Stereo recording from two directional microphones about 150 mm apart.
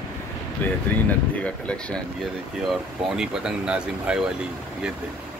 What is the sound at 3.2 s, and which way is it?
Speech, 5° right (ahead or behind).